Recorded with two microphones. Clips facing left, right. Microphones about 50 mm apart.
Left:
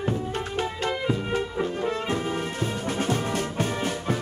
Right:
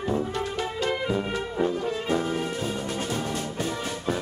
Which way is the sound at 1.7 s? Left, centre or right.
Left.